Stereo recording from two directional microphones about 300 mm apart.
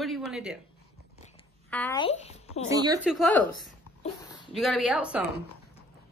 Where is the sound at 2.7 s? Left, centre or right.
Centre.